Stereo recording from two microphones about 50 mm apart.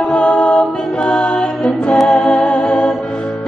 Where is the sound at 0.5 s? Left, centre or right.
Centre.